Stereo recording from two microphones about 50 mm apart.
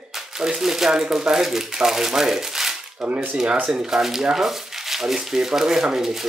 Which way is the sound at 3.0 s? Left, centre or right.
Right.